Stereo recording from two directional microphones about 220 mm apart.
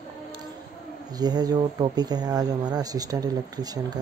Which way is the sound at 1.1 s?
15° right (ahead or behind).